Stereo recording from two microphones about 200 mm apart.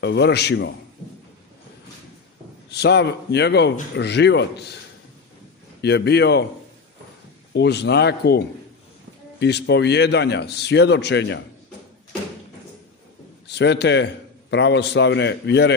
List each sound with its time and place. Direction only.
0.0 s a man's voice: 60° left (ahead or behind)
2.7 s a man's voice: 55° left (ahead or behind)
5.8 s a man's voice: 55° left (ahead or behind)
7.5 s a man's voice: 55° left (ahead or behind)
13.5 s a man's voice: 60° left (ahead or behind)